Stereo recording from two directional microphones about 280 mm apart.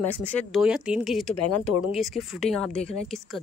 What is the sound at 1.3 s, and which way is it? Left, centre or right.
Speech, left.